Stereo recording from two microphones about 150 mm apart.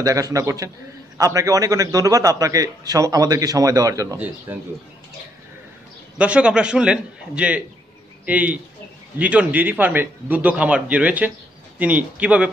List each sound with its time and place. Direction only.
0.0 s a man's voice: 20° right (ahead or behind)
6.1 s a man's voice: 10° right (ahead or behind)